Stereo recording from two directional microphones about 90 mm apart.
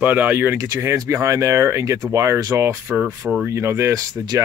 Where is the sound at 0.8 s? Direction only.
35° right (ahead or behind).